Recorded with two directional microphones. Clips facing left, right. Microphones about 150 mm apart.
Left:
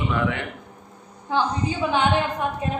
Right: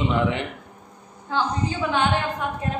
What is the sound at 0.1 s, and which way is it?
Speech, 20° right (ahead or behind).